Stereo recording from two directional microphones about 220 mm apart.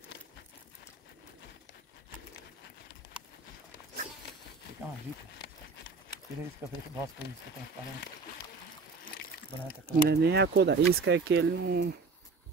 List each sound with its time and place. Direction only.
10.0 s speech: 50° right (ahead or behind)